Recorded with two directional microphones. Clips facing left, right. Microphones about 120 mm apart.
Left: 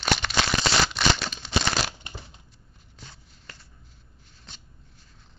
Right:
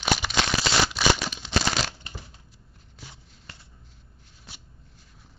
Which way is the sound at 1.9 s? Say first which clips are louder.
Left 1 dB; 20° left (ahead or behind).